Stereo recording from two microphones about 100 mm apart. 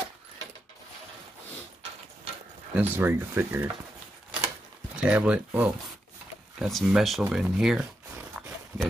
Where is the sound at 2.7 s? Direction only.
20° right (ahead or behind).